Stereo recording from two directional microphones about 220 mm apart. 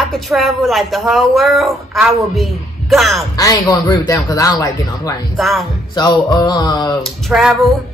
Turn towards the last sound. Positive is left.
turn(degrees=0)  # may be behind; listen again after turning